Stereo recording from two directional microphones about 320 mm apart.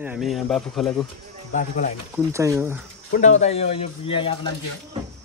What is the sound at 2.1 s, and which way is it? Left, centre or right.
Speech, centre.